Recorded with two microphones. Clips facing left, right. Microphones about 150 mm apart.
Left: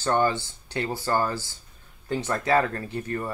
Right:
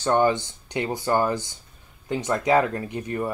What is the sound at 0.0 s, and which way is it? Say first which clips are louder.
Speech: right 3 dB; 15° right (ahead or behind).